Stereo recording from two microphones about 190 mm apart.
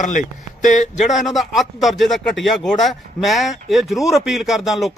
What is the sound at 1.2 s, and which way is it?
Speech, centre (ahead or behind).